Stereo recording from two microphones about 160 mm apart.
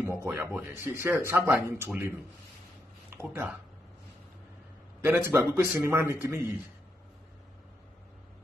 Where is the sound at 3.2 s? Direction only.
10° right (ahead or behind).